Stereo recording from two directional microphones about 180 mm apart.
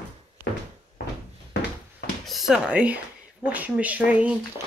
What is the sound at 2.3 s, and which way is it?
Speech, centre (ahead or behind).